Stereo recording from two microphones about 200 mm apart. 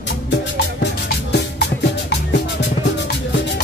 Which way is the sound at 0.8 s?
60° left (ahead or behind).